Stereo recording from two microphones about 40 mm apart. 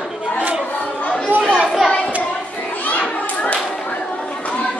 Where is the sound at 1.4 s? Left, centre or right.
Left.